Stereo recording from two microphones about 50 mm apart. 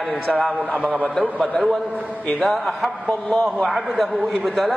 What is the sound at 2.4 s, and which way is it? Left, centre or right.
A man's voice, centre.